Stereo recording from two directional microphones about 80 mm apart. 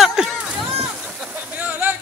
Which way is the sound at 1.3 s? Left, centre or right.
Centre.